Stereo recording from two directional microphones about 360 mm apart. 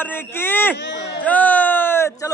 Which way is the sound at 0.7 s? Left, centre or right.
Left.